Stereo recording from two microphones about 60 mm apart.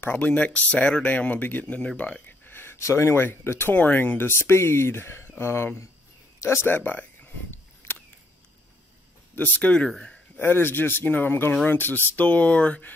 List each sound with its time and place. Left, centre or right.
0.0 s speech: left
2.8 s speech: left
3.7 s speech: left
6.7 s a sound: left
9.3 s speech: left
9.8 s speech: centre
10.3 s speech: left
12.3 s speech: left